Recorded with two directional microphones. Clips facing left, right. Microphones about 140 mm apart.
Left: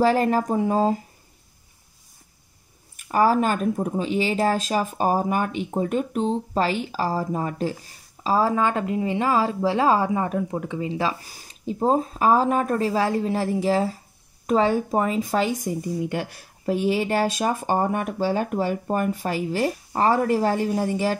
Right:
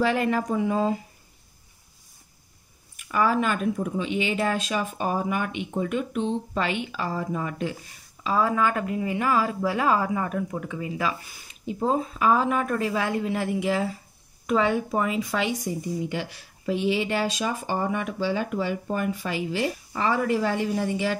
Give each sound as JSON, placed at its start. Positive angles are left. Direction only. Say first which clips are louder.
{"t": 0.0, "sound": "speech", "louder": "left 4 dB", "side_deg": 40}
{"t": 3.0, "sound": "speech", "louder": "left 4 dB", "side_deg": 40}